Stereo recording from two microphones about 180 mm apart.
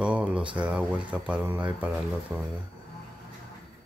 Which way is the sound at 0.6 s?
5° right (ahead or behind).